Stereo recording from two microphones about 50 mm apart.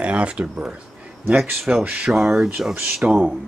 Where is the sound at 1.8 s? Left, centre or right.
Right.